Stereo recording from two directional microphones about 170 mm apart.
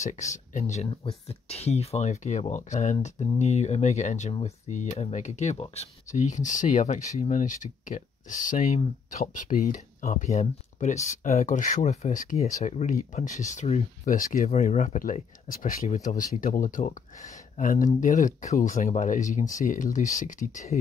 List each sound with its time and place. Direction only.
0.0 s speech: 45° left (ahead or behind)